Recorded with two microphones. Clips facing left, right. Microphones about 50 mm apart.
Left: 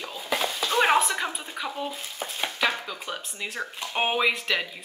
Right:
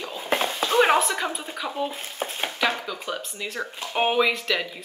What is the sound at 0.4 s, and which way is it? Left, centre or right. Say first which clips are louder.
Stir: right 3 dB; right.